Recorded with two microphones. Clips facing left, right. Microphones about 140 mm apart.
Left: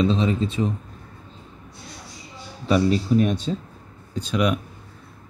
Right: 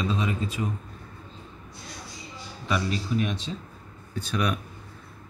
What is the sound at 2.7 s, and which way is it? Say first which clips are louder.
Speech: left 9 dB; 35° left (ahead or behind).